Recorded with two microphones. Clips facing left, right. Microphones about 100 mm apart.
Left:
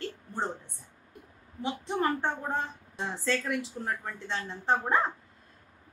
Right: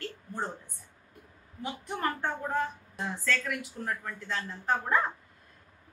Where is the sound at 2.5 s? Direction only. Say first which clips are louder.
Right 2 dB; 25° left (ahead or behind).